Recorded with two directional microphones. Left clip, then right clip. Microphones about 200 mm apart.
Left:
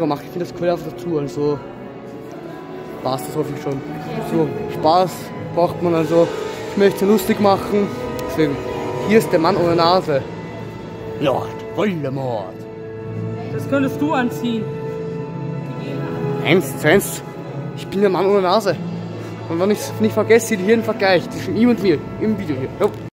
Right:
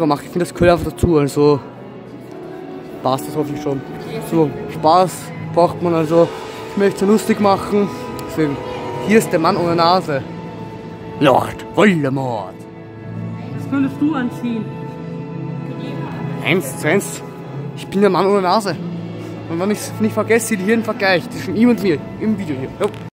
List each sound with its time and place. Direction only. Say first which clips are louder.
0.0 s speech: right 4 dB; 25° right (ahead or behind)
3.0 s speech: right 4 dB; 30° right (ahead or behind)
4.6 s speech: right 2 dB; 15° right (ahead or behind)
11.1 s speech: right 6 dB; 30° right (ahead or behind)
13.7 s speech: even; 70° left (ahead or behind)
16.4 s speech: left 2 dB; centre (ahead or behind)
17.9 s speech: right 2 dB; 15° right (ahead or behind)